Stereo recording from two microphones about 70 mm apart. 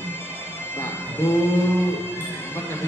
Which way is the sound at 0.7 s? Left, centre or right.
Left.